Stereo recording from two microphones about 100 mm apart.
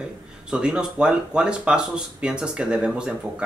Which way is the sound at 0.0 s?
10° right (ahead or behind).